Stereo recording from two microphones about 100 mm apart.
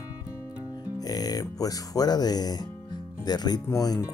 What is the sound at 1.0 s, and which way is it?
Speech, 40° left (ahead or behind).